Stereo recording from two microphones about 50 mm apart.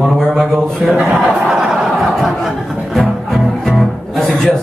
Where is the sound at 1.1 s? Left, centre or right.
Centre.